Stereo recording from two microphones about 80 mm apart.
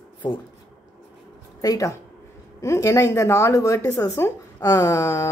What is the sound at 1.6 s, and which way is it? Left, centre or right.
Speech, left.